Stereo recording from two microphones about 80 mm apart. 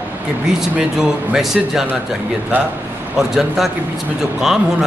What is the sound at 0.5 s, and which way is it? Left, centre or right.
A man's voice, centre.